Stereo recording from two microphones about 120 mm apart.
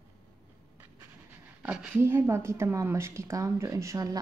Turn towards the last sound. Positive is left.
turn(degrees=-30)  # may be behind; listen again after turning